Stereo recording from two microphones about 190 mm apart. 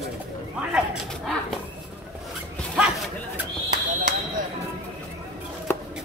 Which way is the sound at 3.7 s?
45° right (ahead or behind).